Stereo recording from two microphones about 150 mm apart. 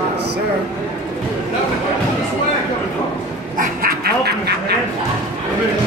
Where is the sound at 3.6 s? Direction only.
85° right.